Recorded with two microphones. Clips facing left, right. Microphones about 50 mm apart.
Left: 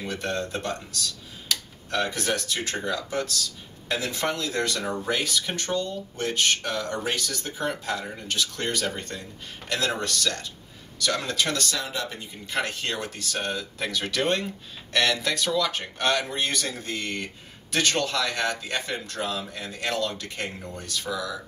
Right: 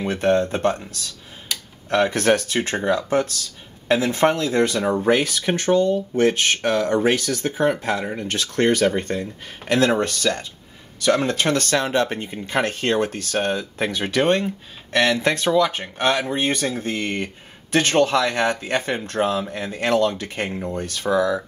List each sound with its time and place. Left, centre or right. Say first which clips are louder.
0.0 s speech: right 11 dB; right
1.5 s tick-tock: even; centre
1.9 s speech: right 9 dB; right
20.7 s speech: right 13 dB; right